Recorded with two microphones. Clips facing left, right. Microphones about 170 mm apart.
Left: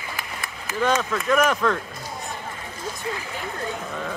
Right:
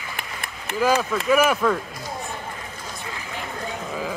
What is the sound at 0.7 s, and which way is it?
Speech, 5° right (ahead or behind).